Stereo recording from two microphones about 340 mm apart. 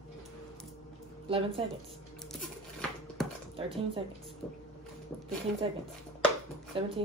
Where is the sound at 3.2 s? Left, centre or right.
Centre.